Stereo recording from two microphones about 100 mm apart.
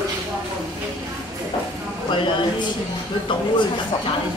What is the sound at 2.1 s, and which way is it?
Speech, 55° left (ahead or behind).